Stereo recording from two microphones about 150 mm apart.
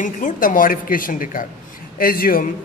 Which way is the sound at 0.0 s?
60° left (ahead or behind).